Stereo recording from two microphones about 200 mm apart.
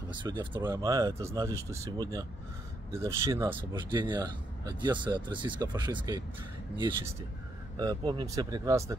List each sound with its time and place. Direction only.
0.1 s speech: 25° right (ahead or behind)